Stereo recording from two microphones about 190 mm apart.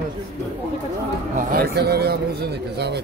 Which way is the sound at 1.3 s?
50° right (ahead or behind).